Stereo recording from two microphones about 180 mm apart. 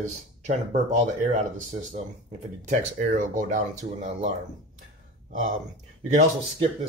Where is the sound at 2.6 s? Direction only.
45° right (ahead or behind).